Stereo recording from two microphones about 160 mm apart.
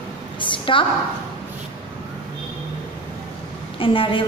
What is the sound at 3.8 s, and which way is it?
Speech, 35° left (ahead or behind).